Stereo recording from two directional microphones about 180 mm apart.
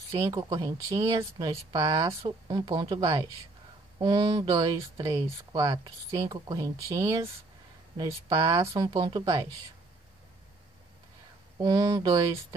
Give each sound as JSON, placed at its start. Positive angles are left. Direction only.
{"t": 0.2, "sound": "speech", "side_deg": -25}
{"t": 11.6, "sound": "speech", "side_deg": -20}